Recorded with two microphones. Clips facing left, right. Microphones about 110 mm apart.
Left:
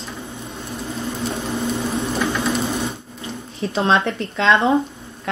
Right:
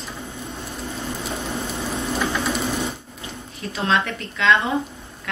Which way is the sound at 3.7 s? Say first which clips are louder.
Left 4 dB; 30° left (ahead or behind).